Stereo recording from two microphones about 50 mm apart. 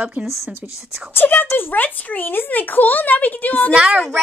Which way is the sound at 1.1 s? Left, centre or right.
Left.